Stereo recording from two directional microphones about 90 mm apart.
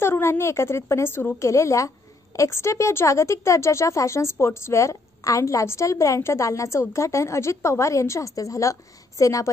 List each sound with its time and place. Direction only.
0.0 s speech: 30° left (ahead or behind)